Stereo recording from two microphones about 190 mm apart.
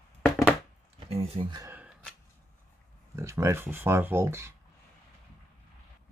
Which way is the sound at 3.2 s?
15° right (ahead or behind).